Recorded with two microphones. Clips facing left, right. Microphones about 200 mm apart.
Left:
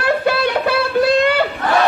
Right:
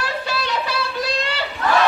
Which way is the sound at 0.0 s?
55° left (ahead or behind).